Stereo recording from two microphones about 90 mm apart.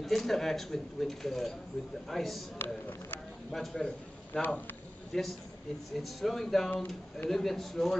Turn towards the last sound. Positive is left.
turn(degrees=5)  # may be behind; listen again after turning